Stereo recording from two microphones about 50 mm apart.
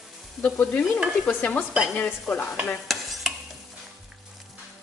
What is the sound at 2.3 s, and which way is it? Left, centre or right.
Stir, centre.